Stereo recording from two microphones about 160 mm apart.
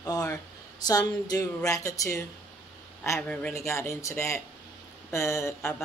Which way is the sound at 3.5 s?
15° left (ahead or behind).